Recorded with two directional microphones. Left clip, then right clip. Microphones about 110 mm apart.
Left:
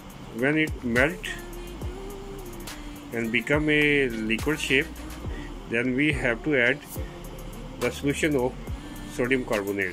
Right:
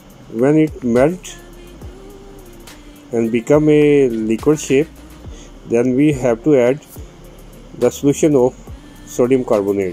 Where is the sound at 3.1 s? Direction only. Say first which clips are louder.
Right 11 dB; 50° right (ahead or behind).